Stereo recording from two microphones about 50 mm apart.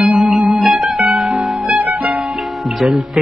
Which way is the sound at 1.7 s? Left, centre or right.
Right.